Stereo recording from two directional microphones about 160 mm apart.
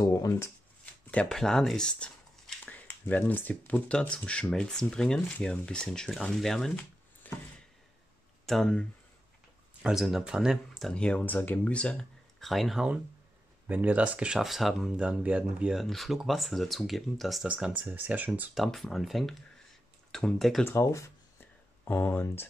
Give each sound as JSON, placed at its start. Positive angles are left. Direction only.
{"t": 0.0, "sound": "speech", "side_deg": 20}
{"t": 1.1, "sound": "speech", "side_deg": 5}
{"t": 8.5, "sound": "speech", "side_deg": 5}
{"t": 18.6, "sound": "speech", "side_deg": 0}
{"t": 20.6, "sound": "a sound", "side_deg": 15}